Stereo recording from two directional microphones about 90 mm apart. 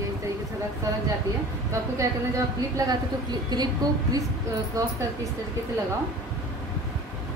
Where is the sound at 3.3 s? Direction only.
50° right (ahead or behind).